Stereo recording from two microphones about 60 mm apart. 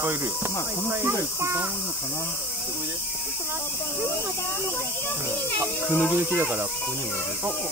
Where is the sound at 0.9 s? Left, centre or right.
Right.